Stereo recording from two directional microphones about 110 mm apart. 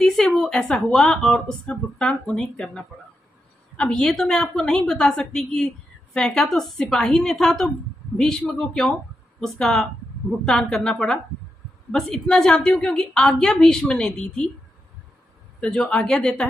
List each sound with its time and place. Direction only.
0.0 s a woman's voice: 5° left (ahead or behind)
15.6 s speech: 5° left (ahead or behind)